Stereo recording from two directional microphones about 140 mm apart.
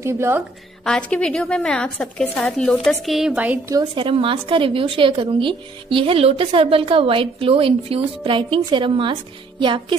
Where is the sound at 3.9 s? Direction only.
40° right (ahead or behind).